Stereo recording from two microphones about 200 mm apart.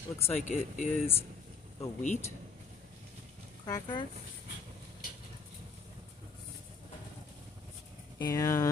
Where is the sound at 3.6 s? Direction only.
20° left (ahead or behind).